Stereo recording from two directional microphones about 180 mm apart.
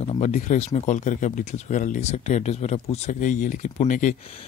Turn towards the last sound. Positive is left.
turn(degrees=45)  # may be behind; listen again after turning